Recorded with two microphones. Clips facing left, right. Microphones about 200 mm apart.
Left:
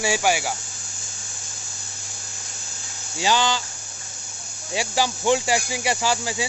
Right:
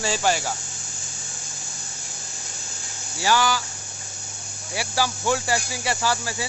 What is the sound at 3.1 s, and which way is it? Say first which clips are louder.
Speech: even; 20° left (ahead or behind).